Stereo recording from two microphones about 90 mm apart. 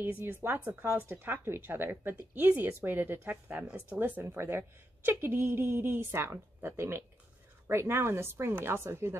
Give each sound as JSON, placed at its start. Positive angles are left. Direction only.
{"t": 0.0, "sound": "a woman's voice", "side_deg": -25}